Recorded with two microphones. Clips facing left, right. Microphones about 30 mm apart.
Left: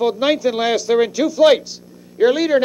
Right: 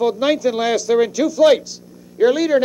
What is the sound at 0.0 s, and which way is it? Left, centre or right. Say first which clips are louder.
Speech: even; left.